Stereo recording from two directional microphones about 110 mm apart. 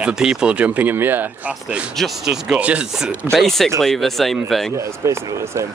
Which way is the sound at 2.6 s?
10° right (ahead or behind).